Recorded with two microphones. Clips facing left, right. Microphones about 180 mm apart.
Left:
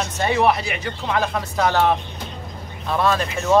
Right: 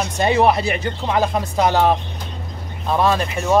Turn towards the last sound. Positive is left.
turn(degrees=-15)  # may be behind; listen again after turning